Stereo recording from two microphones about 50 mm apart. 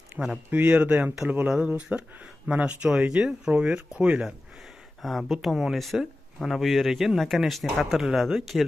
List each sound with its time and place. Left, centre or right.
0.5 s speech: right
5.0 s speech: centre